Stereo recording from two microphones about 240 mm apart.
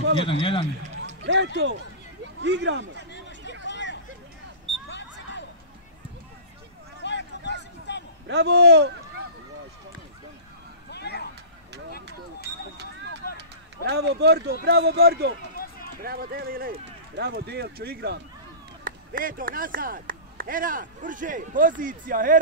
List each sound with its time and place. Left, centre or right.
0.2 s speech: left
1.0 s speech: right
3.1 s hubbub: left
3.6 s vehicle: left
4.8 s a sound: left
7.0 s a sound: left
8.3 s speech: right
10.9 s a sound: left
13.8 s speech: right
15.5 s run: left
16.0 s speech: right